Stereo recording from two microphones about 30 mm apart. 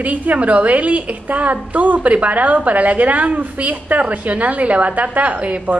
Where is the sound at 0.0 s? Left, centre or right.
Right.